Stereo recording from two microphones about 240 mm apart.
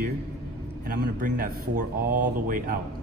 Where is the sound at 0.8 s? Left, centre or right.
Right.